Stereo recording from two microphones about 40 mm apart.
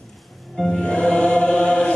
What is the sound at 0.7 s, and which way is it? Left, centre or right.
Music, left.